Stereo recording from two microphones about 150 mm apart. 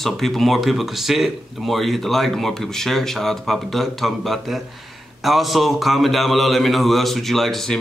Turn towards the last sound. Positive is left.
turn(degrees=0)  # may be behind; listen again after turning